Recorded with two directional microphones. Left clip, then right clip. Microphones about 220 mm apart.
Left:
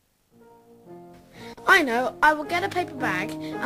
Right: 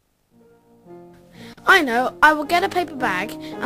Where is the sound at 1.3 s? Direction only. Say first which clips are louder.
Right 3 dB; 5° right (ahead or behind).